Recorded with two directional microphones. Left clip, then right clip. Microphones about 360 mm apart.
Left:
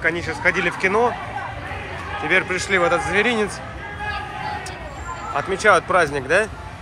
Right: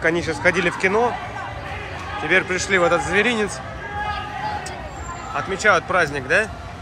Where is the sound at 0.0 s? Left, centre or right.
Centre.